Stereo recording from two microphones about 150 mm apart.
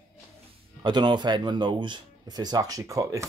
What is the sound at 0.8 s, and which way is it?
Speech, 30° right (ahead or behind).